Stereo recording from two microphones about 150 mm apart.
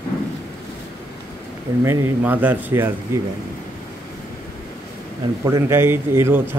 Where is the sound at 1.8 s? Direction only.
20° right (ahead or behind).